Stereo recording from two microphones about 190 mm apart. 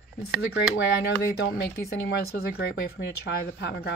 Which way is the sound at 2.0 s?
55° left (ahead or behind).